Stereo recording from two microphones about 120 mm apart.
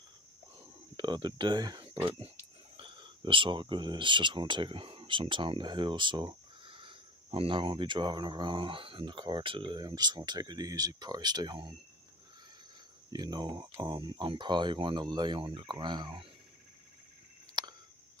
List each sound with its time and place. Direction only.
0.9 s speech: 40° right (ahead or behind)
13.1 s speech: 35° right (ahead or behind)
17.6 s a sound: 40° right (ahead or behind)